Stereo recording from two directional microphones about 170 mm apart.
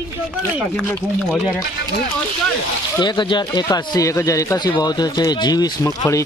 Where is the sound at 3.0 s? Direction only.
25° left (ahead or behind).